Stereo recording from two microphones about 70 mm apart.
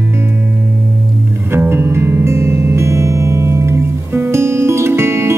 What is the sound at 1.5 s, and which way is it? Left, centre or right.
Music, right.